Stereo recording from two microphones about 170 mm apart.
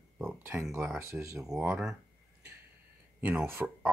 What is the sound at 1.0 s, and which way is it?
Speech, 15° right (ahead or behind).